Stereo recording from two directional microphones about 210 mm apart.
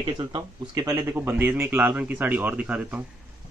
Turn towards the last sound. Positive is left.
turn(degrees=-5)  # may be behind; listen again after turning